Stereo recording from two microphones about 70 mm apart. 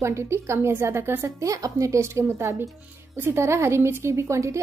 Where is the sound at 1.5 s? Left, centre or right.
Right.